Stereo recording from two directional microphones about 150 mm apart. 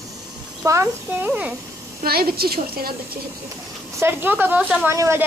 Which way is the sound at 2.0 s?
90° right.